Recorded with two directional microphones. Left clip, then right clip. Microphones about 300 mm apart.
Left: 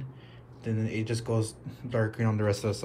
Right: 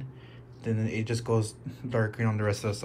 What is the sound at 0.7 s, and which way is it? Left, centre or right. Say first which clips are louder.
Speech: right 1 dB; centre.